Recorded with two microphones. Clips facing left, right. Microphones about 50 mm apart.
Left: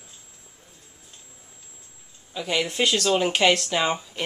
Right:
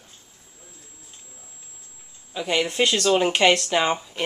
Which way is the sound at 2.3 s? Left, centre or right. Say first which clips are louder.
Right 2 dB; centre.